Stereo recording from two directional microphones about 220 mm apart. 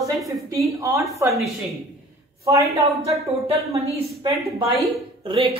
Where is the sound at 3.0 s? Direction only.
30° right (ahead or behind).